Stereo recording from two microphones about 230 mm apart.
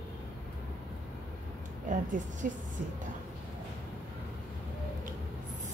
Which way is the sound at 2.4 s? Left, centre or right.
Right.